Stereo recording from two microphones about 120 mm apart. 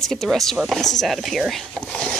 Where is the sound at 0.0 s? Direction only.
5° left (ahead or behind).